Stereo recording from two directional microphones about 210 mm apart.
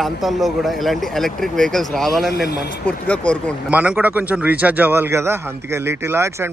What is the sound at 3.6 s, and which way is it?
A man's voice, 5° right (ahead or behind).